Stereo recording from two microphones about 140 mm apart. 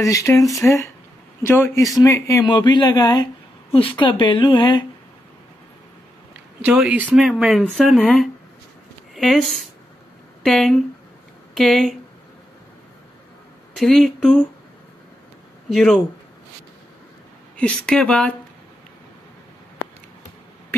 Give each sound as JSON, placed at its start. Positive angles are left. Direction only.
{"t": 0.0, "sound": "speech", "side_deg": 25}
{"t": 2.4, "sound": "speech", "side_deg": 35}
{"t": 6.6, "sound": "speech", "side_deg": -10}
{"t": 13.7, "sound": "speech", "side_deg": 0}
{"t": 15.7, "sound": "speech", "side_deg": 5}
{"t": 17.6, "sound": "speech", "side_deg": 10}